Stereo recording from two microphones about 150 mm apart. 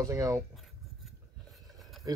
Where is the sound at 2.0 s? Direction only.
25° right (ahead or behind).